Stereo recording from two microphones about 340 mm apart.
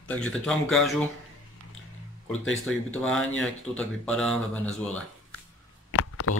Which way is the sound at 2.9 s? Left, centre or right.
Centre.